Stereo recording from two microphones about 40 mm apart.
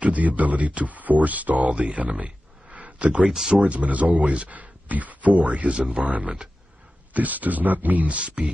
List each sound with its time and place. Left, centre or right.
0.0 s speech: right
3.3 s speech: centre
3.5 s speech: right